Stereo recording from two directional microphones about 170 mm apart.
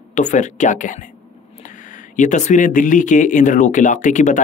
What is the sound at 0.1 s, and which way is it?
Speech, 45° left (ahead or behind).